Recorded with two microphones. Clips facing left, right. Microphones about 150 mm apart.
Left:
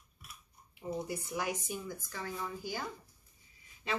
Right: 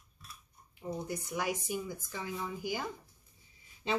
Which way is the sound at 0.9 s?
5° left (ahead or behind).